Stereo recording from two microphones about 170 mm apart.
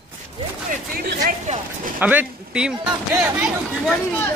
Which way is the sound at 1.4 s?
45° right (ahead or behind).